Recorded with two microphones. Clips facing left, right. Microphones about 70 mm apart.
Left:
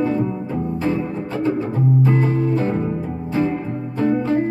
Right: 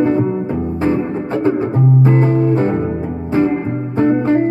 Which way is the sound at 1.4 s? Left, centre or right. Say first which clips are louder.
Right 4 dB; right.